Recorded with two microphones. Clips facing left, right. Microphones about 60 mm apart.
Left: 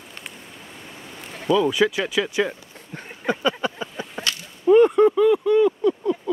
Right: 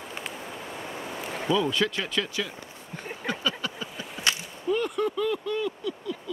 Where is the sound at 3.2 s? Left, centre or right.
Left.